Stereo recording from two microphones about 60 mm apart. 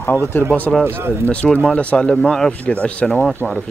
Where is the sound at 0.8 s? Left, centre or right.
Right.